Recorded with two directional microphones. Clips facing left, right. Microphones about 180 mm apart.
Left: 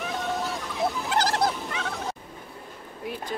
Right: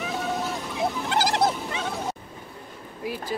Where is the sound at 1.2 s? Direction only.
20° right (ahead or behind).